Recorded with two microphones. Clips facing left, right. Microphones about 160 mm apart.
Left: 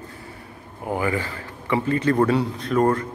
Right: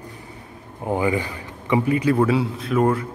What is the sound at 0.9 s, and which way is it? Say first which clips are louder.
A man's voice: right 3 dB; 20° right (ahead or behind).